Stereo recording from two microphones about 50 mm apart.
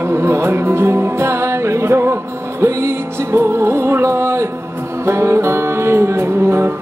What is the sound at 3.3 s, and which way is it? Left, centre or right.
Music, right.